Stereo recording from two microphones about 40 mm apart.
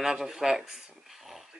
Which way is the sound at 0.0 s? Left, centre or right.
Centre.